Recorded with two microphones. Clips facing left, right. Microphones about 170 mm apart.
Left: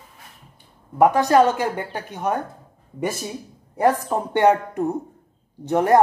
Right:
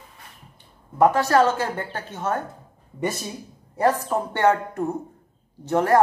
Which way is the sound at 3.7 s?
15° left (ahead or behind).